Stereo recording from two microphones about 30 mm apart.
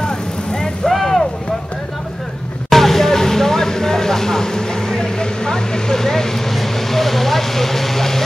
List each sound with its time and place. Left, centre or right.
0.0 s vehicle: left
0.8 s vehicle: centre
2.7 s vehicle: centre
6.5 s vehicle: centre